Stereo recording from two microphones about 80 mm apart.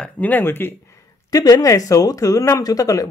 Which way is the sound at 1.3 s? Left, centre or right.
Left.